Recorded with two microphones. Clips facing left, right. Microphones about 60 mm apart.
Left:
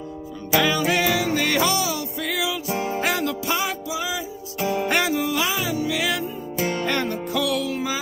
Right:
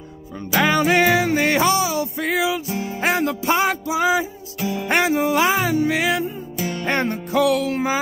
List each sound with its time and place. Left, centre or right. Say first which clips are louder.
0.6 s music: right 4 dB; right
2.7 s music: left 2 dB; left
3.0 s music: right 3 dB; right
4.8 s music: right 7 dB; right